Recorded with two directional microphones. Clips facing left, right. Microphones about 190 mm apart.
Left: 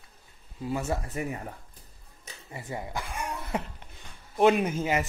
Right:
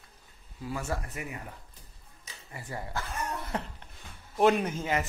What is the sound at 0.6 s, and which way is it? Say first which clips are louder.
Speech: left 4 dB; 20° left (ahead or behind).